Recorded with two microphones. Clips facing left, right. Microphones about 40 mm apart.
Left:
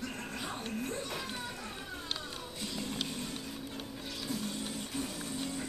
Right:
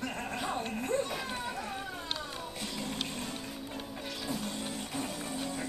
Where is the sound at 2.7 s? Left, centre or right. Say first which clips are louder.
Left 1 dB; centre.